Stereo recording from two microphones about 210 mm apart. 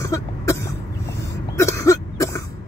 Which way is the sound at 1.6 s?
15° left (ahead or behind).